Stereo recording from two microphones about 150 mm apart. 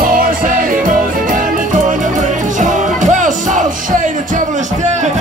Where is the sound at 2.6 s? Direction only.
55° right (ahead or behind).